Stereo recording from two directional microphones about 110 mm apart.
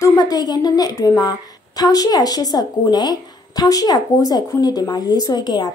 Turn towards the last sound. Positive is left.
turn(degrees=40)  # may be behind; listen again after turning